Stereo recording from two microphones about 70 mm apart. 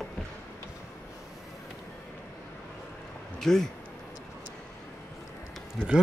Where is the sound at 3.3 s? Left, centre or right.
Centre.